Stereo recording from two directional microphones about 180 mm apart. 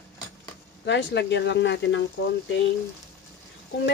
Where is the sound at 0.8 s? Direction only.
80° left.